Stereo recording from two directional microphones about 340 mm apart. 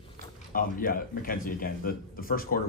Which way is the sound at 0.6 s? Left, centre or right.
Left.